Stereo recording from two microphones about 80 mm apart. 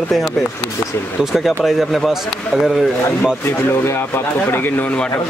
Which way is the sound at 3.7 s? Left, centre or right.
Left.